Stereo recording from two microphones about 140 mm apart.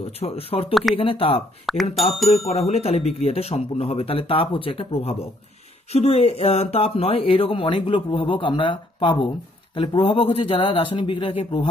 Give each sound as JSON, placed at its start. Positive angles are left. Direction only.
{"t": 0.2, "sound": "speech", "side_deg": 45}
{"t": 1.7, "sound": "speech", "side_deg": 0}
{"t": 2.5, "sound": "speech", "side_deg": 50}